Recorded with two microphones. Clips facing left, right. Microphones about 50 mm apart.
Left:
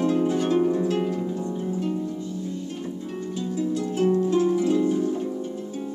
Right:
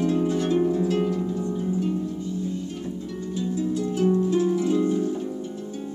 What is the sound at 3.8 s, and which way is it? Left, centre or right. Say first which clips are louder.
Harp: even; left.